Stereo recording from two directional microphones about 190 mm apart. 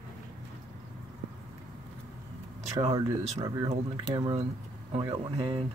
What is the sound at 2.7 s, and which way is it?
Speech, 20° right (ahead or behind).